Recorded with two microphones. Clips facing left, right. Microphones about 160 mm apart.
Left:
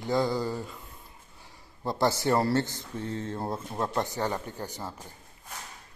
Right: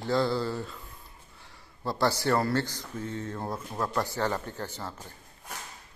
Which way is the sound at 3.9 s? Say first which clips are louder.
Right 2 dB; 15° left (ahead or behind).